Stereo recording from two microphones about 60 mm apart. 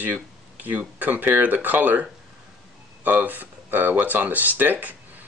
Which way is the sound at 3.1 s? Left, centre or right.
Right.